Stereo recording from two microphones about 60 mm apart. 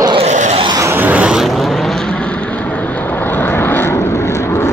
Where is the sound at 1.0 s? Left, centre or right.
Right.